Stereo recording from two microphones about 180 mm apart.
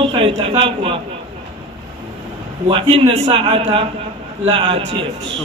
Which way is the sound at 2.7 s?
30° right (ahead or behind).